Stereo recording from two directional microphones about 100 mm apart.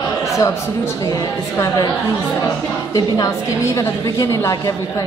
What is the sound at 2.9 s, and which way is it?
A woman's voice, 35° left (ahead or behind).